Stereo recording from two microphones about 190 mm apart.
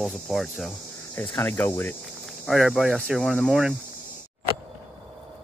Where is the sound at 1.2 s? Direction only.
10° left (ahead or behind).